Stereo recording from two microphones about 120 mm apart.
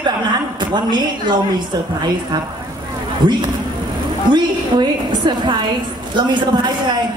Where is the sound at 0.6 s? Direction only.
35° right (ahead or behind).